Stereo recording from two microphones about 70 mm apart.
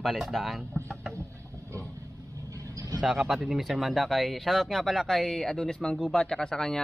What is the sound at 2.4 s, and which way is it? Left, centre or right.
Vehicle, right.